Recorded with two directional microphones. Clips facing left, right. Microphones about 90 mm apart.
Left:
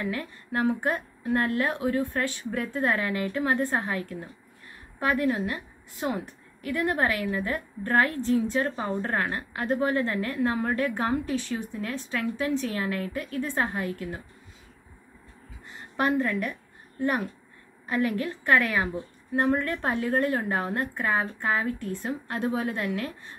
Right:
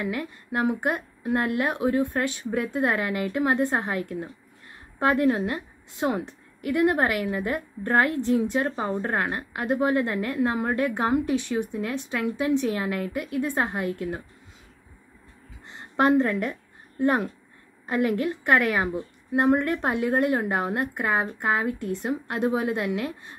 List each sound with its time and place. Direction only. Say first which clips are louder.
0.0 s a woman's voice: right 2 dB; 20° right (ahead or behind)
15.6 s a sound: right 5 dB; 25° right (ahead or behind)
17.0 s a woman's voice: right 4 dB; 25° right (ahead or behind)